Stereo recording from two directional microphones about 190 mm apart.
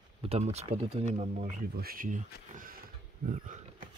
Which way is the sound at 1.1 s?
50° right (ahead or behind).